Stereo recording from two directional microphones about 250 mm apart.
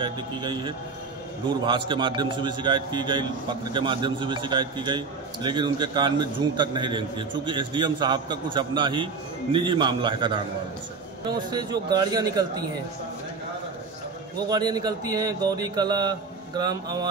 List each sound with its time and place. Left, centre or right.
0.0 s a man's voice: centre
14.5 s a man's voice: centre